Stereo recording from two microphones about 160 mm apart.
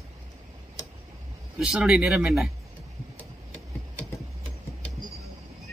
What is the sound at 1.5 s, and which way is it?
Speech, 5° right (ahead or behind).